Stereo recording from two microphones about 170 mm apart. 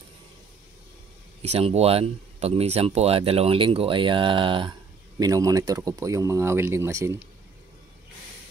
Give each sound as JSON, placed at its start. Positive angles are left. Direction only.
{"t": 1.5, "sound": "speech", "side_deg": -40}